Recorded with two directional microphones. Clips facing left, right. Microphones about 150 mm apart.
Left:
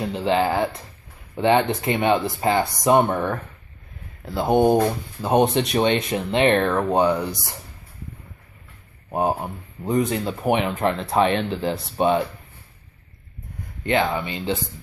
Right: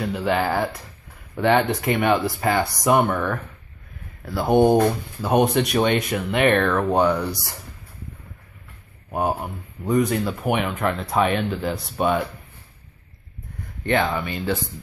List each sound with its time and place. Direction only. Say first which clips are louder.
0.0 s speech: left 1 dB; 25° left (ahead or behind)
9.1 s speech: left 1 dB; 30° left (ahead or behind)
13.8 s speech: even; 15° left (ahead or behind)